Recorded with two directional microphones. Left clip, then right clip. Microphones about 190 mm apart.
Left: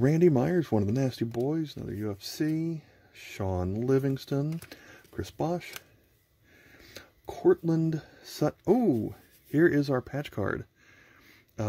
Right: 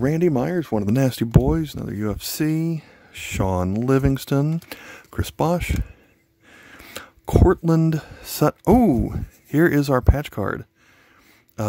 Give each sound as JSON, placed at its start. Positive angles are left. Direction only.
{"t": 0.0, "sound": "speech", "side_deg": -35}